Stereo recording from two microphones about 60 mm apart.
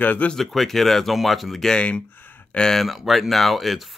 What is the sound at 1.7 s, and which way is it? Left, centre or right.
Speech, centre.